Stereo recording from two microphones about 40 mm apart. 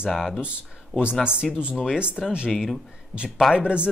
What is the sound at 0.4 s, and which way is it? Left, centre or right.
Speech, right.